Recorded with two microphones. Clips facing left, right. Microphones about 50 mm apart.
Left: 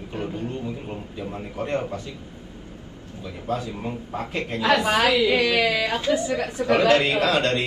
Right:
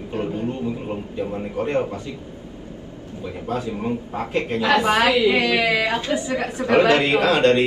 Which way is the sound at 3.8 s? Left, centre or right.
Right.